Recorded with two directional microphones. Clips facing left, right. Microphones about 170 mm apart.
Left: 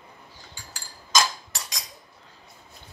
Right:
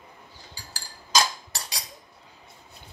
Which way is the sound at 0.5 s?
35° right (ahead or behind).